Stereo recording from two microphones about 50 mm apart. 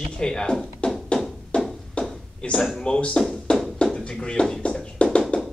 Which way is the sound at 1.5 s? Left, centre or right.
Left.